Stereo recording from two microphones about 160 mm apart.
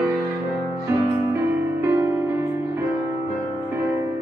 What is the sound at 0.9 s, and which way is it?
Music, 15° right (ahead or behind).